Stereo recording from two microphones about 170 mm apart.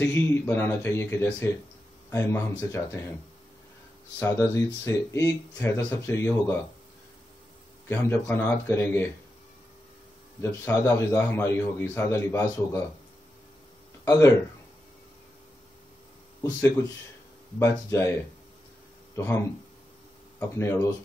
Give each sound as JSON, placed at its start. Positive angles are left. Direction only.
{"t": 0.0, "sound": "speech", "side_deg": 15}
{"t": 4.2, "sound": "speech", "side_deg": 15}
{"t": 7.9, "sound": "speech", "side_deg": 15}
{"t": 10.4, "sound": "speech", "side_deg": 15}
{"t": 14.0, "sound": "speech", "side_deg": 15}
{"t": 17.6, "sound": "speech", "side_deg": 15}
{"t": 19.1, "sound": "speech", "side_deg": 15}